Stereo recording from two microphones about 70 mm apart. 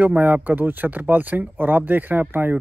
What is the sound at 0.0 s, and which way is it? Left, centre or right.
Speech, right.